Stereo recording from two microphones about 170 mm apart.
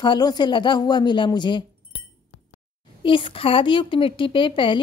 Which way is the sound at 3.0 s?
30° left (ahead or behind).